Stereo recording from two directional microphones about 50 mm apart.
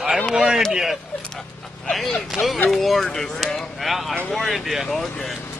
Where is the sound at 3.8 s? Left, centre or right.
Centre.